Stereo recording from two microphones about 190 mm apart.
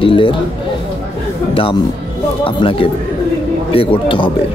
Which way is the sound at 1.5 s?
30° left (ahead or behind).